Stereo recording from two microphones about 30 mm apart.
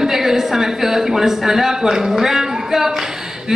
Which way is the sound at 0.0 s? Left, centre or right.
Centre.